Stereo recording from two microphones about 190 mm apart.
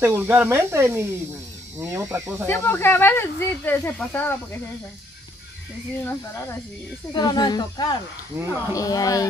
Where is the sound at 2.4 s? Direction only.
10° left (ahead or behind).